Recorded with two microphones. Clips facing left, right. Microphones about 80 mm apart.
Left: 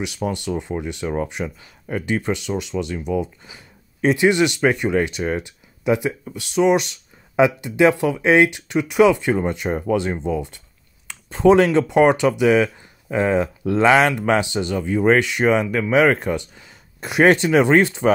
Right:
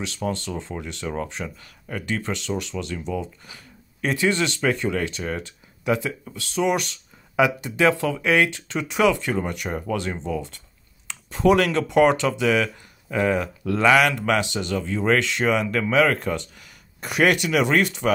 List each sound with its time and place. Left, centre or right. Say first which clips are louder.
0.0 s speech: left 3 dB; centre